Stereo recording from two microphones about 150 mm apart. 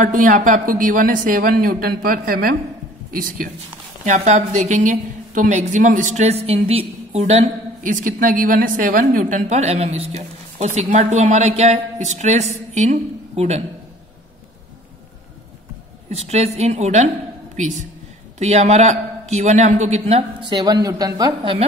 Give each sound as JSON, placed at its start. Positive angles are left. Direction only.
{"t": 0.0, "sound": "speech", "side_deg": -60}
{"t": 4.0, "sound": "a woman's voice", "side_deg": -55}
{"t": 16.1, "sound": "a woman's voice", "side_deg": -45}